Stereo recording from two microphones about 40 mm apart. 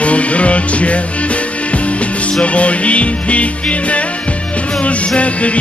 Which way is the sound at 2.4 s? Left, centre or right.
Left.